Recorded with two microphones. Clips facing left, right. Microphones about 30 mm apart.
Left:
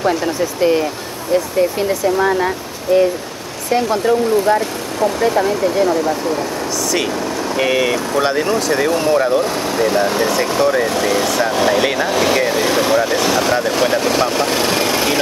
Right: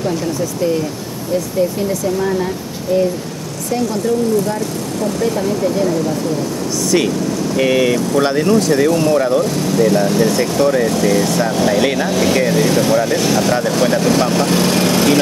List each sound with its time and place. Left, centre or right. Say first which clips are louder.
0.0 s speech: left 2 dB; left
3.7 s speech: left 2 dB; left
7.5 s speech: right 2 dB; centre
9.4 s speech: right 2 dB; left; by 15.1 s centre